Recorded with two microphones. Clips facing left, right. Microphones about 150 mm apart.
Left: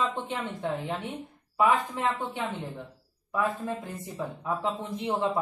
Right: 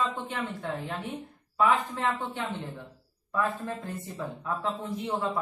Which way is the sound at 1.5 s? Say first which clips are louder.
Left 1 dB; 15° left (ahead or behind).